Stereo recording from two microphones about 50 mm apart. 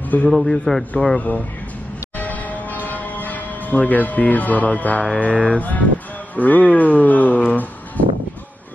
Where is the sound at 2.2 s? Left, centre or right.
Left.